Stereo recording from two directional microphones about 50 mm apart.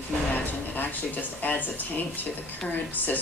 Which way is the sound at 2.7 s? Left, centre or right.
Left.